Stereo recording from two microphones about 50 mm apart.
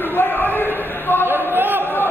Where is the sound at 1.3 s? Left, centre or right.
Right.